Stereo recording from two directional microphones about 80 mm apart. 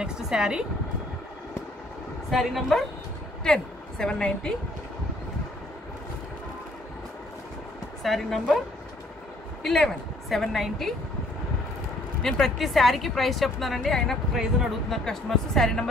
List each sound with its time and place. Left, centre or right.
0.0 s speech: centre
2.3 s a woman's voice: centre
8.0 s a woman's voice: centre
9.6 s a woman's voice: centre
12.2 s a woman's voice: centre